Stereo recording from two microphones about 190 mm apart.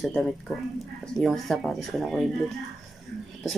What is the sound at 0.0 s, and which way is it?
Speech, 5° left (ahead or behind).